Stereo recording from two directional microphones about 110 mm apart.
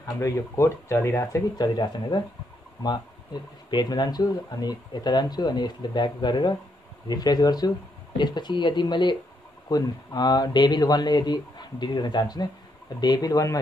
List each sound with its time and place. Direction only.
0.2 s speech: 25° left (ahead or behind); by 2.2 s 40° left (ahead or behind)
3.7 s speech: 40° left (ahead or behind)